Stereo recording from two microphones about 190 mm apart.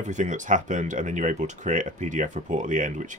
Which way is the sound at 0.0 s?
40° right (ahead or behind).